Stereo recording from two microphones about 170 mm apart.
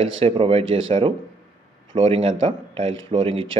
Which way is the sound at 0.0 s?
35° right (ahead or behind).